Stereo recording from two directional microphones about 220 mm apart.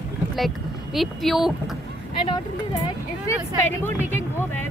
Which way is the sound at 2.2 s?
20° left (ahead or behind).